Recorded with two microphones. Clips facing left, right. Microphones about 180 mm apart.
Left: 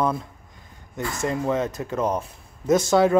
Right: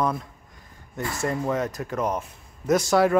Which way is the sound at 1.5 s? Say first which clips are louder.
Left 2 dB; 25° left (ahead or behind).